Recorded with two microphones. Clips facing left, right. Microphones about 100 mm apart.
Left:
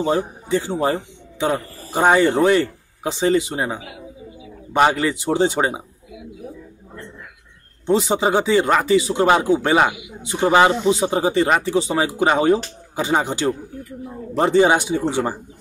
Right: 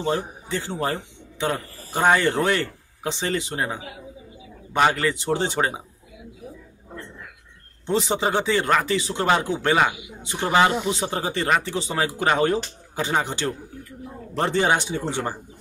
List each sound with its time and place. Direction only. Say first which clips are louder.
0.0 s a man's voice: left 5 dB; 15° left (ahead or behind)
7.8 s speech: left 5 dB; 10° left (ahead or behind)